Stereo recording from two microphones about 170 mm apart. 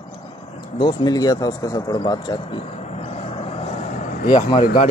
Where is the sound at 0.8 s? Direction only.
25° left (ahead or behind); by 4.3 s 50° left (ahead or behind).